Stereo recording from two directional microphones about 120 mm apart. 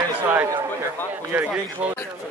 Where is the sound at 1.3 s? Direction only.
15° right (ahead or behind).